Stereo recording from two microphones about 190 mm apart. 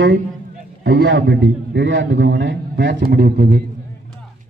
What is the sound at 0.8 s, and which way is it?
A man's voice, 65° right (ahead or behind).